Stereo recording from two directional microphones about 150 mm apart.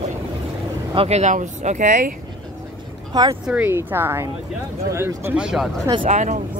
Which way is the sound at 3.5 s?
10° right (ahead or behind).